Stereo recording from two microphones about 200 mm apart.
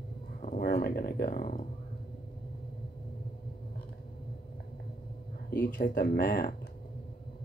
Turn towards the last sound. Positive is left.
turn(degrees=45)  # may be behind; listen again after turning